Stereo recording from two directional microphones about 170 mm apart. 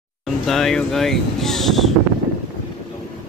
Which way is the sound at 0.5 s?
Centre (ahead or behind).